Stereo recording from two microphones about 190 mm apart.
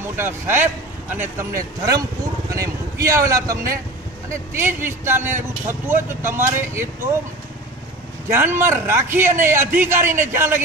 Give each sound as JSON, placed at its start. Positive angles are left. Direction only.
{"t": 0.1, "sound": "a man's voice", "side_deg": -10}
{"t": 8.3, "sound": "speech", "side_deg": -15}